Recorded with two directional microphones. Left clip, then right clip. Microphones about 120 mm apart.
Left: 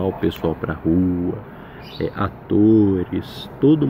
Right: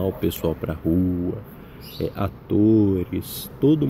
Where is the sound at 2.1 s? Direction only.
20° left (ahead or behind).